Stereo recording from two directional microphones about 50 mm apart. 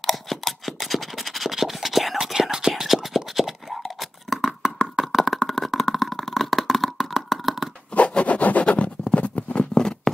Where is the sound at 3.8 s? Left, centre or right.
Centre.